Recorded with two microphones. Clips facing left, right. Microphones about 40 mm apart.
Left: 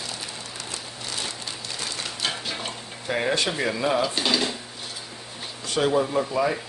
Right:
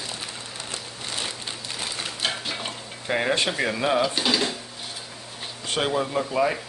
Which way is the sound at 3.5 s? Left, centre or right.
Centre.